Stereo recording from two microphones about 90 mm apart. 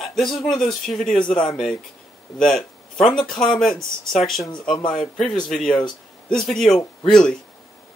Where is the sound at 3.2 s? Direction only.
5° left (ahead or behind).